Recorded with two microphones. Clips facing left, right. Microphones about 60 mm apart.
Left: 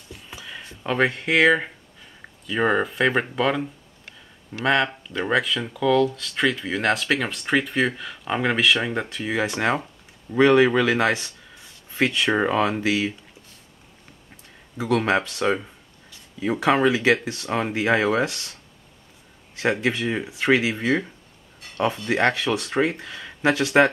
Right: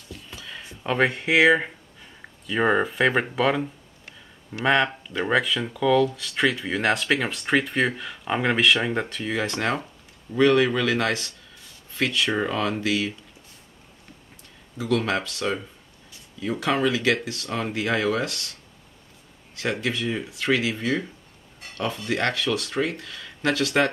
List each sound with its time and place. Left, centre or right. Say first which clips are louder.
0.3 s a sound: left 3 dB; centre
0.6 s speech: even; centre
10.3 s speech: left 3 dB; left
14.8 s speech: left 3 dB; left
19.5 s speech: left 4 dB; left